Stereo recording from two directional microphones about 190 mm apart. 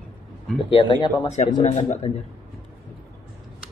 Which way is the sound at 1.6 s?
35° left (ahead or behind).